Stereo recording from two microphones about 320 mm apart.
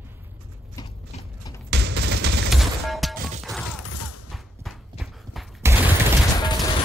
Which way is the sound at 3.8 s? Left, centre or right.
Left.